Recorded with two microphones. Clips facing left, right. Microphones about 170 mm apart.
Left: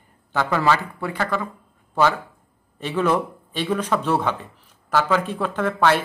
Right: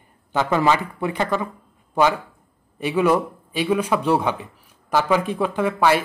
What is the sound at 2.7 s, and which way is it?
Speech, 10° right (ahead or behind).